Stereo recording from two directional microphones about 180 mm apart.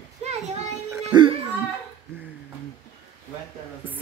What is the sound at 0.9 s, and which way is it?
Music, 25° right (ahead or behind).